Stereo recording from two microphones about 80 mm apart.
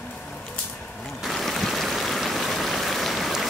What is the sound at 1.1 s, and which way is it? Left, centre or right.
Stream, centre.